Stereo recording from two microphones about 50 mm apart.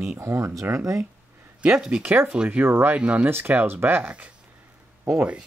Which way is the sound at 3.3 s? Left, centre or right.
Right.